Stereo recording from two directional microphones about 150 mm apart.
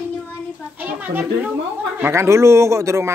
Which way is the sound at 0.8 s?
10° right (ahead or behind).